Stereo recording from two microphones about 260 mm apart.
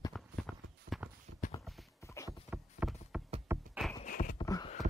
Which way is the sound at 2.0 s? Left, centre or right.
Centre.